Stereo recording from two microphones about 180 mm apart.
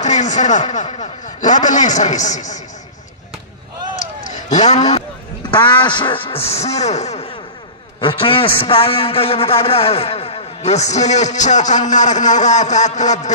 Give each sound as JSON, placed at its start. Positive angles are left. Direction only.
{"t": 0.0, "sound": "a man's voice", "side_deg": 40}
{"t": 4.2, "sound": "a sound", "side_deg": 40}
{"t": 5.5, "sound": "a man's voice", "side_deg": 25}